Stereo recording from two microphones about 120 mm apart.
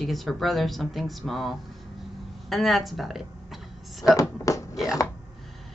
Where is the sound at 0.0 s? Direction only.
Centre (ahead or behind).